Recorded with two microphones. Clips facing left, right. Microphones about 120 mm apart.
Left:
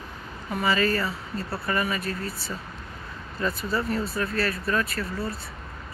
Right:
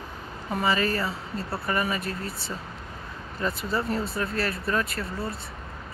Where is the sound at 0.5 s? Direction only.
20° right (ahead or behind).